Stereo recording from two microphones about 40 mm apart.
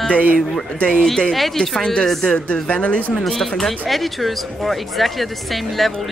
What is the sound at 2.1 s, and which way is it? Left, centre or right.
Speech, centre.